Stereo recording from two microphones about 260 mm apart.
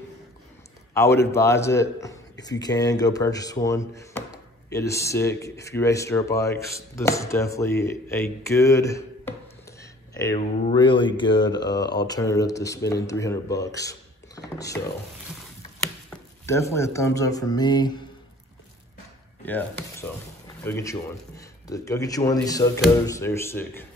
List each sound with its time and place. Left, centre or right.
0.9 s a man's voice: centre
9.8 s a sound: centre
10.6 s speech: centre
16.1 s speech: centre
19.4 s speech: centre